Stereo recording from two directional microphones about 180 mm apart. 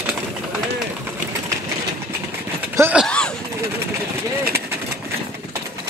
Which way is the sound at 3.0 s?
5° left (ahead or behind).